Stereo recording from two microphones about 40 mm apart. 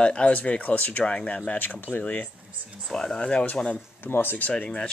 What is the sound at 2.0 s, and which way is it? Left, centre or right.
Speech, left.